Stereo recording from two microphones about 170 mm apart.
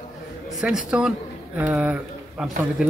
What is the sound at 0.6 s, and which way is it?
A man's voice, 5° right (ahead or behind).